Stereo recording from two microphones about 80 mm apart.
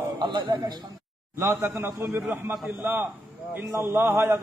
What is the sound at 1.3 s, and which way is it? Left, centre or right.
A man's voice, right.